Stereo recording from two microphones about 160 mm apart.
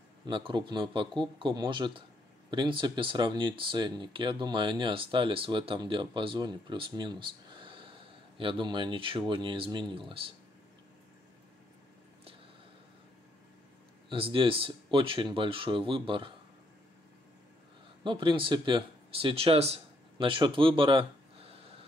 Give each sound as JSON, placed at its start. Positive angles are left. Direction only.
{"t": 0.3, "sound": "speech", "side_deg": -30}
{"t": 14.0, "sound": "speech", "side_deg": -35}
{"t": 18.0, "sound": "speech", "side_deg": -30}